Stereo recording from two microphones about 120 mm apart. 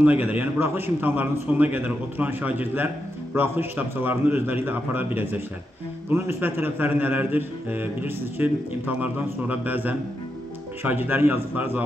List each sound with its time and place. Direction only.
0.0 s a man's voice: 15° right (ahead or behind)